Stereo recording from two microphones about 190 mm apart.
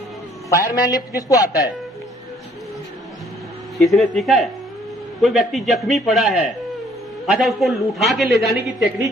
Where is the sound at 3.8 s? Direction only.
Centre (ahead or behind).